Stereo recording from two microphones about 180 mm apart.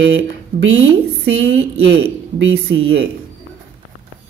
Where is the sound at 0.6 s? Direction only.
90° right.